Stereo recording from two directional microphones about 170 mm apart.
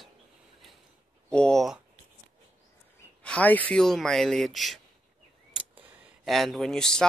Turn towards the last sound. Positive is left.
turn(degrees=5)  # may be behind; listen again after turning